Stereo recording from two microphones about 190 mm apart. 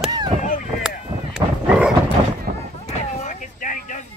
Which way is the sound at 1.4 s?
25° right (ahead or behind).